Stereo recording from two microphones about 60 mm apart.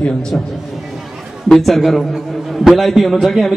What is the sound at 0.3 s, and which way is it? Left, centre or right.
Speech, left.